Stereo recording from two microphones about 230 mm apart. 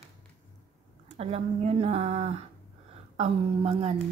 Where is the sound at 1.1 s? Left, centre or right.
Right.